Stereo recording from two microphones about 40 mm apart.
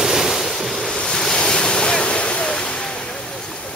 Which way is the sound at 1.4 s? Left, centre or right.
Left.